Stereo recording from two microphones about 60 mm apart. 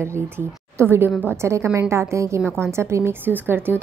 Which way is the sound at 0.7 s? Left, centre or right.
Right.